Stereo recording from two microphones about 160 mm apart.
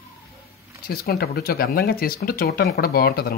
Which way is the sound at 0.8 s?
75° left (ahead or behind).